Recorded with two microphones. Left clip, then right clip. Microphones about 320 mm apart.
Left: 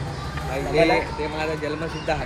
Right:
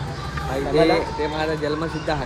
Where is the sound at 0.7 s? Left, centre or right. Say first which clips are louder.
Right 1 dB; centre.